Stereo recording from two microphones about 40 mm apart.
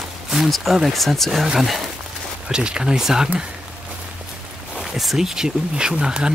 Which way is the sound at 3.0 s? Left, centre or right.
Centre.